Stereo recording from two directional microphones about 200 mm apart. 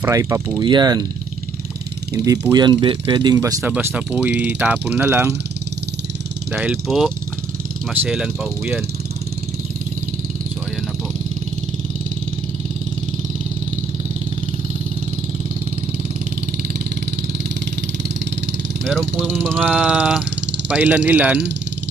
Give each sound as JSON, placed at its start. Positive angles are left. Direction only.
{"t": 0.0, "sound": "speech", "side_deg": -15}
{"t": 2.2, "sound": "speech", "side_deg": -15}
{"t": 6.5, "sound": "speech", "side_deg": 0}
{"t": 18.9, "sound": "speech", "side_deg": -5}